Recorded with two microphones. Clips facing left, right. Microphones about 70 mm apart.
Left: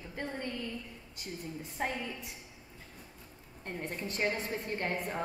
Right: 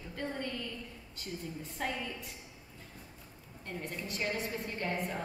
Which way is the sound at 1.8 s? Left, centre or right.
Left.